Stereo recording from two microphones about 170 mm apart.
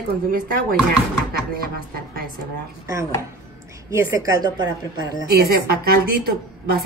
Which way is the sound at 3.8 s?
20° right (ahead or behind).